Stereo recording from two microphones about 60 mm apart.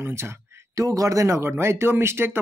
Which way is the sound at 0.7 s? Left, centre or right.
Right.